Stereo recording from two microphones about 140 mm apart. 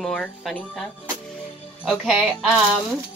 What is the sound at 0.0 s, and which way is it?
Speech, 5° left (ahead or behind).